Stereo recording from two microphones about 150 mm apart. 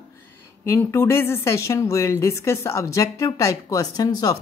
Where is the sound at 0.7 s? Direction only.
20° left (ahead or behind).